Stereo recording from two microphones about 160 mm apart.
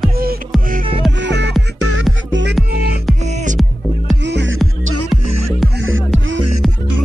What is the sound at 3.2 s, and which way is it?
Music, 50° right (ahead or behind).